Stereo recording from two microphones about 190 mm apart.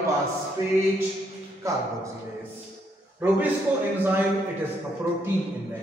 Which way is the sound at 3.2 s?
10° right (ahead or behind).